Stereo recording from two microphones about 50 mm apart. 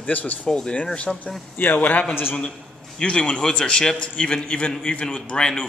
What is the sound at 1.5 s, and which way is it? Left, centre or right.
Speech, left.